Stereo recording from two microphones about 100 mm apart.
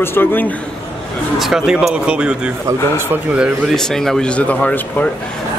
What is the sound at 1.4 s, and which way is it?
Speech, 5° right (ahead or behind).